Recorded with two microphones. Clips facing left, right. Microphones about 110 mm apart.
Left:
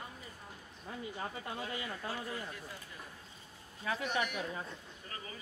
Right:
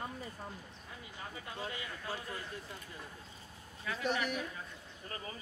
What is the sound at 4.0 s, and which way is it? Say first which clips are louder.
Speech: right 2 dB; 35° right (ahead or behind).